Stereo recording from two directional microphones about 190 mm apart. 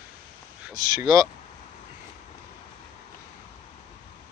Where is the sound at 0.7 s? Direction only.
20° right (ahead or behind).